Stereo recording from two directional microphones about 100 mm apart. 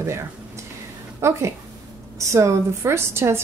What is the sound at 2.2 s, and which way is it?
Speech, 30° right (ahead or behind).